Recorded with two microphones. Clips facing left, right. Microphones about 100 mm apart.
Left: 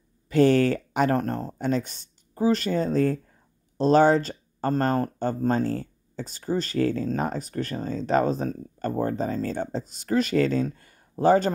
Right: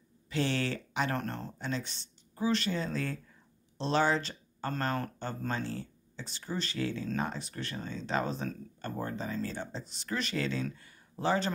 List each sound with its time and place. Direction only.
0.3 s speech: 45° left (ahead or behind)